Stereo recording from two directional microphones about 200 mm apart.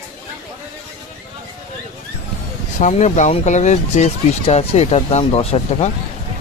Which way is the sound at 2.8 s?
35° left (ahead or behind).